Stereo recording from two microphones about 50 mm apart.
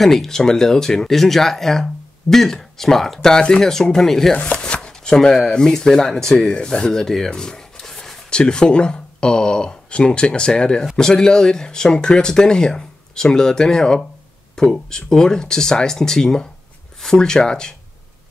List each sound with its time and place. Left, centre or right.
0.0 s speech: centre
4.6 s speech: left
7.2 s a sound: centre
8.4 s speech: centre